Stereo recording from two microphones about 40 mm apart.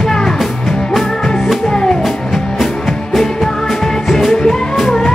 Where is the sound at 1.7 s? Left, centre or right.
Centre.